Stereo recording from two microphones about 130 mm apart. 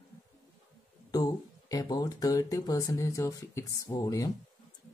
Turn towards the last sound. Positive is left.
turn(degrees=30)  # may be behind; listen again after turning